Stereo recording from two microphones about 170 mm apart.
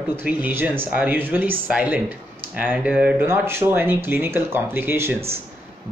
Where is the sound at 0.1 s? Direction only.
10° right (ahead or behind).